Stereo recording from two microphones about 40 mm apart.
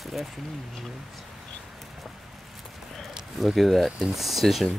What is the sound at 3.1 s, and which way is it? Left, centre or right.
Speech, centre.